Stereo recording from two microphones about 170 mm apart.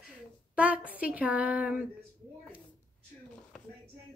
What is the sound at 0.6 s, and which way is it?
Speech, 10° right (ahead or behind).